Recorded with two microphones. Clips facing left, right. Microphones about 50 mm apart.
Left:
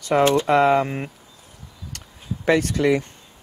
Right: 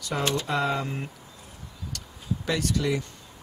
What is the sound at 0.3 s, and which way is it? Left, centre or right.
Speech, left.